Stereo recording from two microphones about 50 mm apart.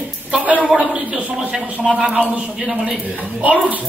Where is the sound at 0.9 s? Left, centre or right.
Centre.